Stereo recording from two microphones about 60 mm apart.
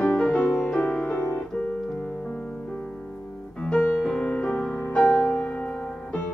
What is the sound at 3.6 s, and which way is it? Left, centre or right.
Music, centre.